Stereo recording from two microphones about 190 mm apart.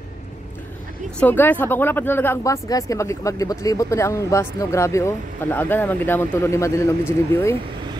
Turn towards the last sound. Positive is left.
turn(degrees=15)  # may be behind; listen again after turning